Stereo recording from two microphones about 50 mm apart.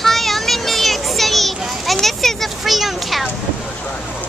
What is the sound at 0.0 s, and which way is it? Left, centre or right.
Children playing, centre.